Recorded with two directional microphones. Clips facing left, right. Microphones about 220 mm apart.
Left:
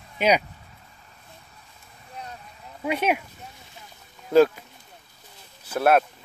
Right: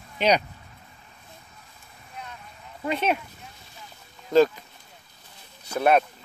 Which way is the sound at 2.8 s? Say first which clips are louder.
Left 1 dB; 10° left (ahead or behind).